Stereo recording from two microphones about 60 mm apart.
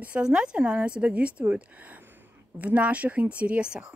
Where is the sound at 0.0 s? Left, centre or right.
Right.